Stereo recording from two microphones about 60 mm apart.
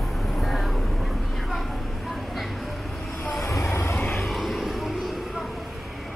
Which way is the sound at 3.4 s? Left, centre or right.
Left.